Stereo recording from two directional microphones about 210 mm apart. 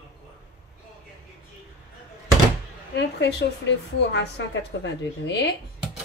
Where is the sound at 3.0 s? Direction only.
55° left (ahead or behind).